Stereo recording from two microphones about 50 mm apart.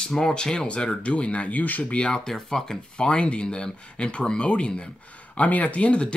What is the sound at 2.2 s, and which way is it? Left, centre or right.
Speech, centre.